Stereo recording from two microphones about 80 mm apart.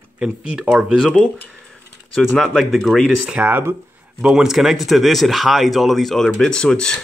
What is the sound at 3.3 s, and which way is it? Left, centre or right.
Speech, centre.